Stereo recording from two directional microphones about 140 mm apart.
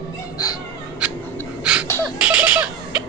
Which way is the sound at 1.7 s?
5° right (ahead or behind).